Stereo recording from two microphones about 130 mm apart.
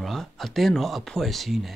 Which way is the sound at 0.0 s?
Centre (ahead or behind).